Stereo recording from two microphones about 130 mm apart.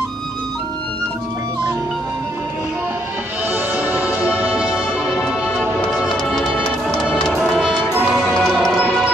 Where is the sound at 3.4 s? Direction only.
15° right (ahead or behind).